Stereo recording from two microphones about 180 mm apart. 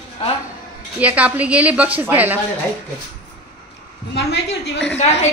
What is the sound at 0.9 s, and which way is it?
A woman's voice, 10° right (ahead or behind).